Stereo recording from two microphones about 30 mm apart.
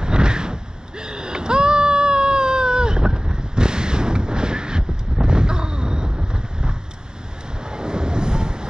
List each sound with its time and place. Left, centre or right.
0.0 s vehicle: right